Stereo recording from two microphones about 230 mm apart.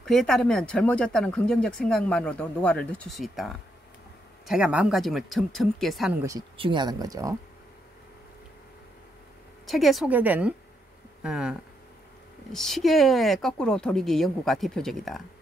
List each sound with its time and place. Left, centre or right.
0.0 s speech: centre
6.2 s speech: centre
9.7 s speech: centre
12.5 s speech: centre